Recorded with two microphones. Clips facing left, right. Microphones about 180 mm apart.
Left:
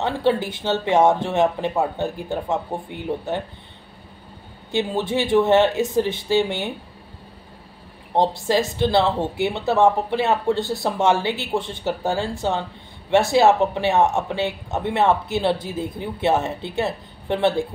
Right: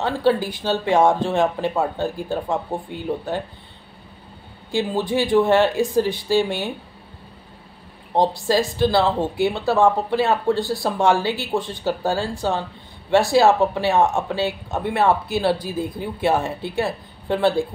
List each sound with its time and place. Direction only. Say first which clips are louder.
0.0 s speech: right 1 dB; 20° left (ahead or behind)
4.6 s speech: right 1 dB; 20° left (ahead or behind)
8.1 s speech: right 1 dB; 20° left (ahead or behind)